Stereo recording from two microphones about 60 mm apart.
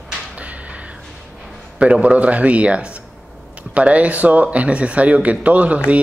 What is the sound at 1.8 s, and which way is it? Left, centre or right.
Speech, centre.